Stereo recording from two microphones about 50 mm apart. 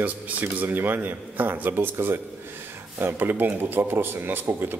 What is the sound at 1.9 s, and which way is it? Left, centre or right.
Speech, right.